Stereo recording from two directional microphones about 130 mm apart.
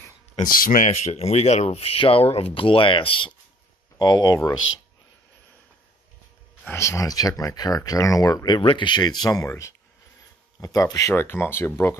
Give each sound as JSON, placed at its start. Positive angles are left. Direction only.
{"t": 0.5, "sound": "speech", "side_deg": 90}
{"t": 1.1, "sound": "speech", "side_deg": 55}
{"t": 4.0, "sound": "speech", "side_deg": 30}
{"t": 6.7, "sound": "speech", "side_deg": 20}